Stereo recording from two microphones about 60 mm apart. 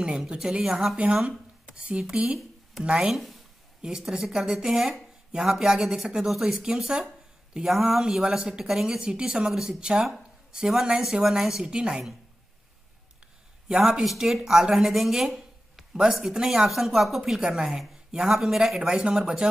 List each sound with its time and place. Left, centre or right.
0.3 s speech: centre
3.1 s speech: centre
3.8 s speech: centre
13.7 s speech: centre